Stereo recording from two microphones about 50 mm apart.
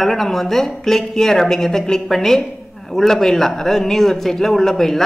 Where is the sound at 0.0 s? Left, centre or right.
Centre.